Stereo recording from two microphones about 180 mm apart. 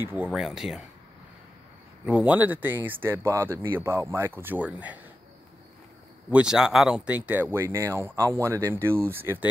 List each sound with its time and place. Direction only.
0.0 s speech: 10° right (ahead or behind)
2.0 s speech: 10° right (ahead or behind)
6.3 s speech: 5° right (ahead or behind)